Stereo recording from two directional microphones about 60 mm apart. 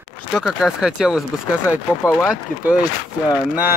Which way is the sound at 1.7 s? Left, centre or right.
Left.